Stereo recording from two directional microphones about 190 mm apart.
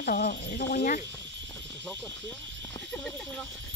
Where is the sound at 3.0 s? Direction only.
5° left (ahead or behind).